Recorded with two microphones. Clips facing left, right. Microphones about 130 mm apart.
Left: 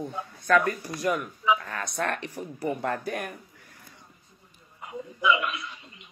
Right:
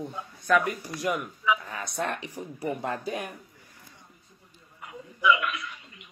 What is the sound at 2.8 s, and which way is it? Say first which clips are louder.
Speech: left 1 dB; 60° left (ahead or behind).